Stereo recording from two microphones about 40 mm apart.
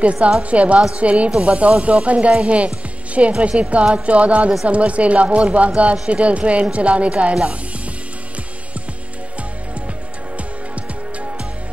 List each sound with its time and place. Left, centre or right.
0.0 s a woman's voice: right